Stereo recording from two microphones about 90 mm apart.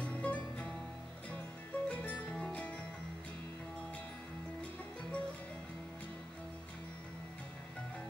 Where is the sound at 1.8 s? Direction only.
15° left (ahead or behind).